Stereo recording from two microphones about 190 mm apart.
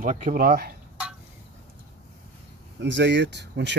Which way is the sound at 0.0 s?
45° right (ahead or behind).